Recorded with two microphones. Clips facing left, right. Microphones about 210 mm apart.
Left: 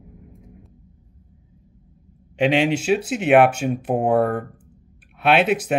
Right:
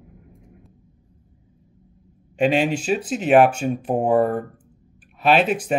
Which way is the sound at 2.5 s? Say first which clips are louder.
Left 2 dB; 70° left (ahead or behind).